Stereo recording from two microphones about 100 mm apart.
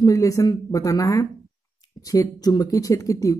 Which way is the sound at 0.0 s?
35° left (ahead or behind).